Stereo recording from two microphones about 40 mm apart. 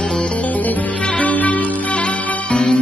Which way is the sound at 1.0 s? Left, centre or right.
Left.